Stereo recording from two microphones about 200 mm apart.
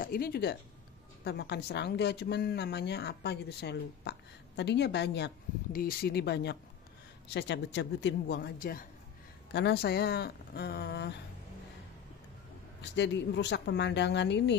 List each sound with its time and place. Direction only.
0.0 s speech: 50° left (ahead or behind)
12.8 s speech: 60° left (ahead or behind)